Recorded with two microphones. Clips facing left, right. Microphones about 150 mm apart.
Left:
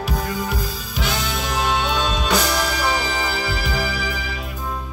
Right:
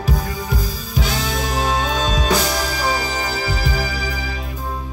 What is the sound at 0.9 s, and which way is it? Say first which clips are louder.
Music: right 3 dB; 35° right (ahead or behind).